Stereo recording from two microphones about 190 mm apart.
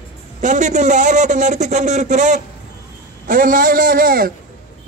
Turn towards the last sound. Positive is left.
turn(degrees=-50)  # may be behind; listen again after turning